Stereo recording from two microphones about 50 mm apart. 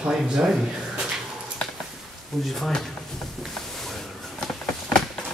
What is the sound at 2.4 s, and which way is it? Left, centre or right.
Speech, centre.